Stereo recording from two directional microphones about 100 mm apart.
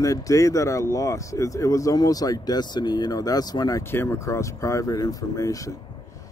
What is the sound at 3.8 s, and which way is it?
Speech, 25° left (ahead or behind).